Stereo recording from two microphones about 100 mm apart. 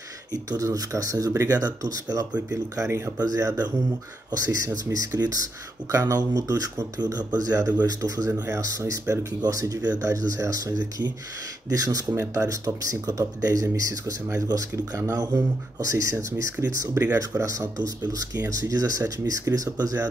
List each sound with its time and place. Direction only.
0.3 s speech: 35° right (ahead or behind)
4.8 s speech: 35° right (ahead or behind)